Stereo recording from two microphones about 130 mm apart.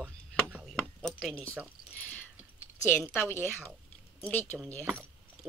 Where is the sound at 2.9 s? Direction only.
15° left (ahead or behind).